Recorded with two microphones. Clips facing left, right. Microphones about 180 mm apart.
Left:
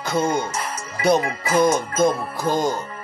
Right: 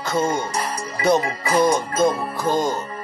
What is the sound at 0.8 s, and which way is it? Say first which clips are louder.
Music: right 3 dB; 35° right (ahead or behind).